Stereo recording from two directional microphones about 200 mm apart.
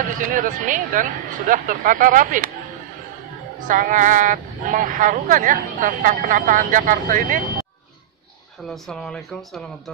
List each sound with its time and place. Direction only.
0.2 s a woman's voice: 40° right (ahead or behind)
3.6 s a woman's voice: 40° right (ahead or behind)
8.6 s speech: centre (ahead or behind)